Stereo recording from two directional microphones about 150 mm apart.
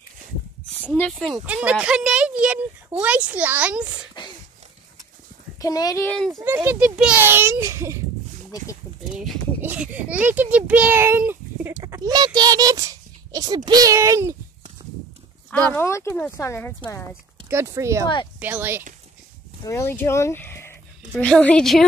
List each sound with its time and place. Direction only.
0.8 s a woman's voice: 10° left (ahead or behind)
1.4 s a child's voice: 10° right (ahead or behind)
5.6 s speech: 25° left (ahead or behind)
6.0 s a woman's voice: 5° left (ahead or behind)
6.4 s a child's voice: 15° right (ahead or behind)
9.1 s a child's voice: centre (ahead or behind)
11.7 s a child's voice: 25° right (ahead or behind)
15.7 s speech: 20° left (ahead or behind)
17.5 s a child's voice: 20° right (ahead or behind)
18.0 s speech: 30° left (ahead or behind)
18.4 s a child's voice: 15° right (ahead or behind)
19.6 s a woman's voice: 20° left (ahead or behind)